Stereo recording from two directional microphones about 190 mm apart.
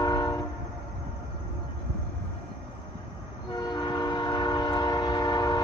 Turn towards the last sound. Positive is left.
turn(degrees=20)  # may be behind; listen again after turning